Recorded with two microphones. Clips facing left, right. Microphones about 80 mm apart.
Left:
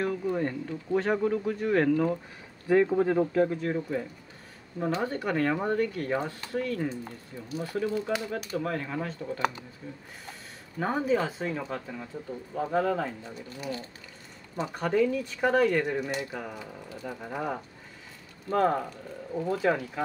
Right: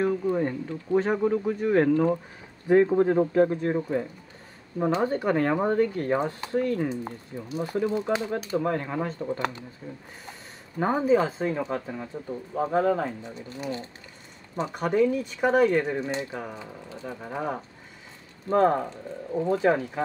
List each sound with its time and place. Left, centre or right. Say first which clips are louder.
0.0 s speech: right 4 dB; centre
2.9 s speech: right 3 dB; right
9.4 s speech: left 1 dB; left
10.8 s speech: right 5 dB; right
14.7 s speech: right 3 dB; centre